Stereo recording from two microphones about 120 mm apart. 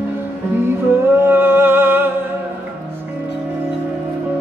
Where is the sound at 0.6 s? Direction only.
20° right (ahead or behind).